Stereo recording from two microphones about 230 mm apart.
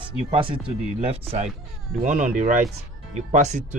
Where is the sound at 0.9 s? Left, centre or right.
Right.